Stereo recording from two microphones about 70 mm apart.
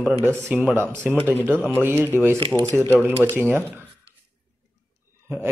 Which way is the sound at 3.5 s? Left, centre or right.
Right.